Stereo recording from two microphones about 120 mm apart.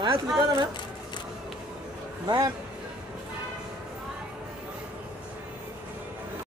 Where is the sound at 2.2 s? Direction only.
30° right (ahead or behind).